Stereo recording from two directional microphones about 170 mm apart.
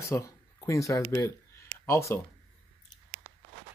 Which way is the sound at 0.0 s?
15° left (ahead or behind).